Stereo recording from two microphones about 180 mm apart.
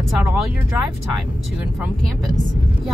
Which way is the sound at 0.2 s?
5° right (ahead or behind).